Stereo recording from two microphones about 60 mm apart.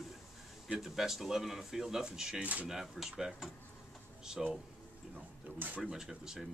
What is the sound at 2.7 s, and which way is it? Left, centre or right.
Speech, centre.